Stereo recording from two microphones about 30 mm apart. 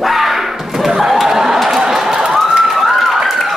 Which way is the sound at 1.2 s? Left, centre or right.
Centre.